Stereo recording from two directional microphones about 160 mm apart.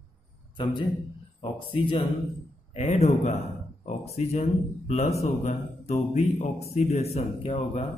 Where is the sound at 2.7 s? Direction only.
40° left (ahead or behind).